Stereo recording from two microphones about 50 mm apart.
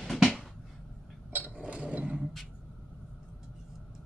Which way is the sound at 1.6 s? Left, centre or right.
Right.